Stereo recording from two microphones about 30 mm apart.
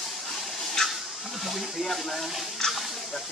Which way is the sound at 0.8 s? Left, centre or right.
Centre.